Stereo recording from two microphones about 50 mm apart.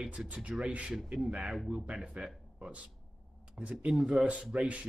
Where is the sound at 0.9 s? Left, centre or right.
Centre; by 3.7 s right.